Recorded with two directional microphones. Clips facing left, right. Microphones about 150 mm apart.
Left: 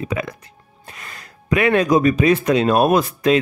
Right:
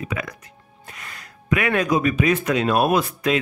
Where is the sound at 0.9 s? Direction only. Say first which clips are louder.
Left 1 dB; 35° left (ahead or behind).